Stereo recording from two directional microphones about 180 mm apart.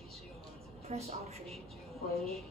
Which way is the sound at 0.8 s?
35° right (ahead or behind).